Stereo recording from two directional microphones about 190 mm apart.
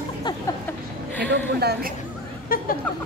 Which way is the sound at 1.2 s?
60° right (ahead or behind).